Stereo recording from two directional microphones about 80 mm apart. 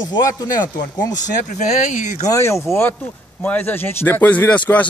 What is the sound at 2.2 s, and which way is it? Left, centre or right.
Speech, left.